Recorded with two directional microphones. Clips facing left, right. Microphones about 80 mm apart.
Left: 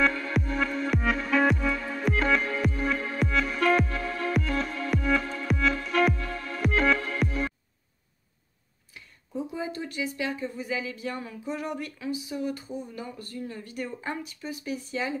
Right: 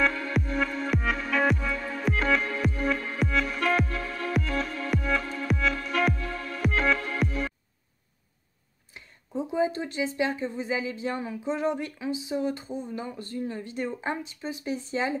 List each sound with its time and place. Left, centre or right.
0.0 s music: centre
8.9 s speech: right